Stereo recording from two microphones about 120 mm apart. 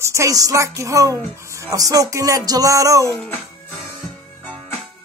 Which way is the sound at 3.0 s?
25° left (ahead or behind).